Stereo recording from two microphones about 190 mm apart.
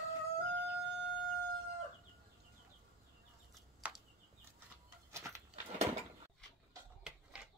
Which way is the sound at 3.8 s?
5° right (ahead or behind).